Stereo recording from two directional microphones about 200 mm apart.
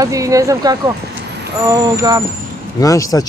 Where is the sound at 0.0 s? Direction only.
15° right (ahead or behind).